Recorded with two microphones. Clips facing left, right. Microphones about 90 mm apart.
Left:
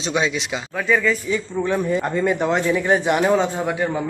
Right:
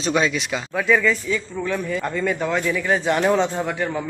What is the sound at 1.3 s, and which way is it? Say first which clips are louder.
Speech: left 3 dB; 20° left (ahead or behind).